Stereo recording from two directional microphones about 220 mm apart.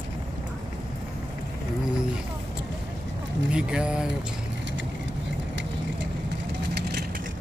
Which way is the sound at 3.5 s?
5° right (ahead or behind).